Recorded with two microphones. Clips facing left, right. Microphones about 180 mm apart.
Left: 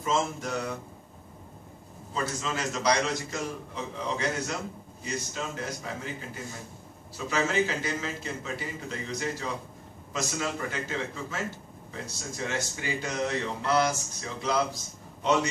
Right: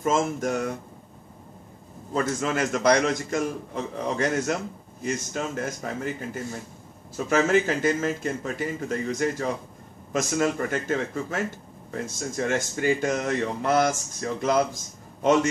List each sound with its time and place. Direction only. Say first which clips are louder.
0.0 s speech: right 5 dB; 50° right (ahead or behind)
2.1 s speech: right 7 dB; 55° right (ahead or behind)
7.2 s speech: right 6 dB; 50° right (ahead or behind)